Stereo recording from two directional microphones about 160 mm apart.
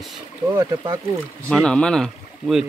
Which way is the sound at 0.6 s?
20° right (ahead or behind).